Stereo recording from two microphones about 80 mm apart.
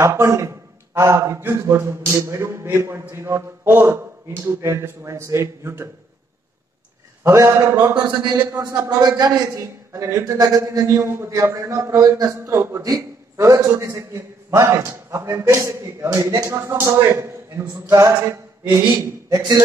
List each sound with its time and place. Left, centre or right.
0.0 s a man's voice: right
7.2 s a man's voice: right
7.9 s a man's voice: right
8.5 s a man's voice: right
9.0 s a man's voice: right
9.5 s a man's voice: right
10.4 s a man's voice: right
10.9 s a man's voice: right
12.4 s a man's voice: right
17.8 s a man's voice: right
18.9 s a man's voice: right